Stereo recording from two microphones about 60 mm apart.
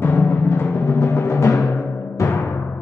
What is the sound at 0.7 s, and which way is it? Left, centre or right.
Music, left.